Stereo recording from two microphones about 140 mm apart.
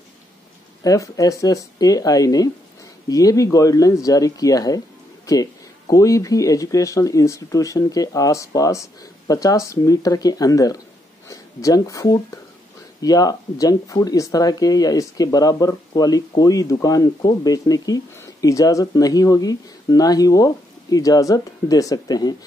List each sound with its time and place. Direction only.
0.8 s speech: 25° left (ahead or behind)